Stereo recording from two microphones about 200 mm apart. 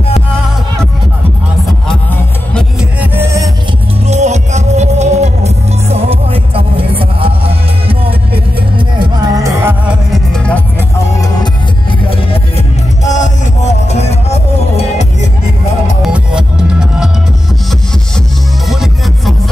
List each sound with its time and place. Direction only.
2.5 s music: 5° right (ahead or behind)
4.1 s music: 35° right (ahead or behind); by 9.8 s 15° right (ahead or behind)
9.8 s music: centre (ahead or behind)
12.1 s music: 30° left (ahead or behind)
16.0 s music: 5° right (ahead or behind)
18.7 s music: centre (ahead or behind)